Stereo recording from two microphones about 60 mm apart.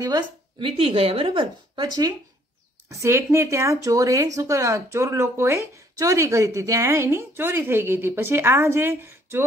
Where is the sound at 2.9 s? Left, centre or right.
Right.